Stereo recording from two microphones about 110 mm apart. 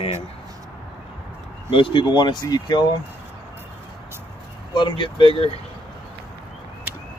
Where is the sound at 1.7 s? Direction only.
50° left (ahead or behind).